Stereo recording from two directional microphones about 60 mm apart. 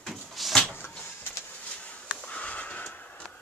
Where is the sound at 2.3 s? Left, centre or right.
Left.